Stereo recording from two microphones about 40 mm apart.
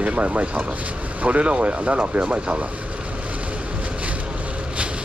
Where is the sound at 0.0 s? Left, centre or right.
Right.